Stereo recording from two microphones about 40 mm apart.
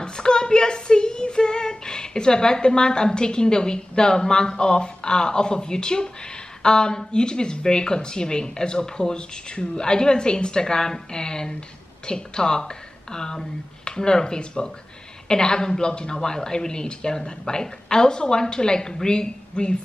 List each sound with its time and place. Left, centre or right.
0.0 s speech: left